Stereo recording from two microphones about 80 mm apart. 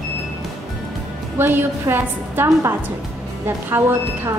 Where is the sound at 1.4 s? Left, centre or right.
Right.